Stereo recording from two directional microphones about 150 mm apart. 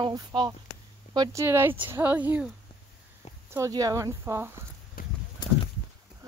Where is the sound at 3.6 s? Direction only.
25° right (ahead or behind).